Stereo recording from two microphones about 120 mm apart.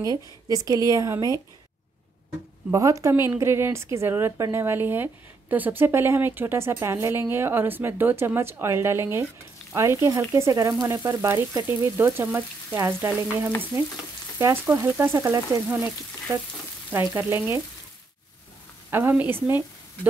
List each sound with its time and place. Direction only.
0.0 s a woman's voice: 30° right (ahead or behind)
2.7 s a woman's voice: 25° right (ahead or behind)
17.1 s a woman's voice: 15° right (ahead or behind)
18.9 s a woman's voice: 15° right (ahead or behind)